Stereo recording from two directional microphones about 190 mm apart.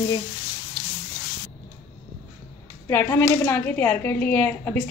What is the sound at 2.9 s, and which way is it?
Speech, 15° left (ahead or behind).